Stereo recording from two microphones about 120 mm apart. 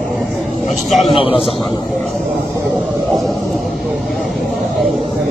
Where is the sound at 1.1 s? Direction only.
50° left (ahead or behind).